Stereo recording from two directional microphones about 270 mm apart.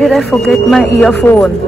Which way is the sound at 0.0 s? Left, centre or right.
Centre.